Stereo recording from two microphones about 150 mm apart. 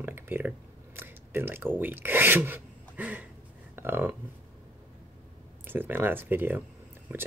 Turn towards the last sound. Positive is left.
turn(degrees=-15)  # may be behind; listen again after turning